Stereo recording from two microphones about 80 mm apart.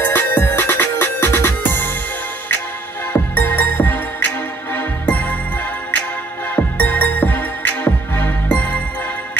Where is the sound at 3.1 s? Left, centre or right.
Left.